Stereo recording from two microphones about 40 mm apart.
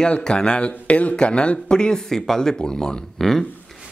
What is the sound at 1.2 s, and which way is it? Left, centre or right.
Speech, left.